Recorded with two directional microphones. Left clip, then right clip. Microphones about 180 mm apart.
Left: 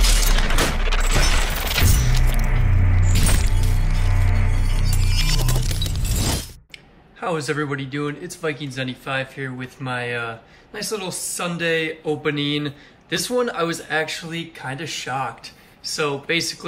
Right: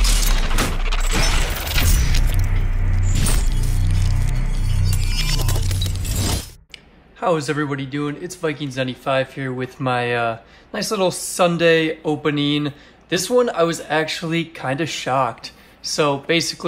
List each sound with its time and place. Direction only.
0.0 s music: centre (ahead or behind)
6.0 s shatter: centre (ahead or behind)
7.2 s speech: 10° right (ahead or behind)